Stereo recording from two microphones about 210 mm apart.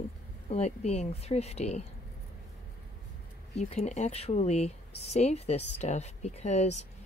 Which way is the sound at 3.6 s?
30° left (ahead or behind).